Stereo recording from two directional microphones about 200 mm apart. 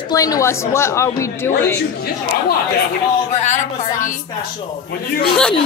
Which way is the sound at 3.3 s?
35° left (ahead or behind).